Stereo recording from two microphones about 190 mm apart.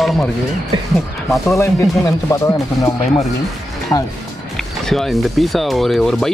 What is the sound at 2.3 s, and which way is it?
Speech, 15° left (ahead or behind).